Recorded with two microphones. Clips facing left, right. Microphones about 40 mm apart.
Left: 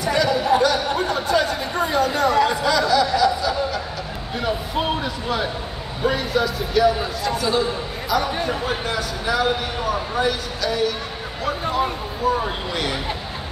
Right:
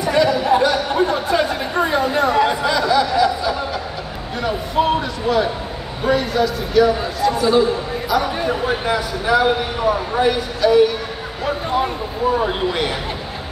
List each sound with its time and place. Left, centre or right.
0.0 s speech: centre
6.0 s a man's voice: centre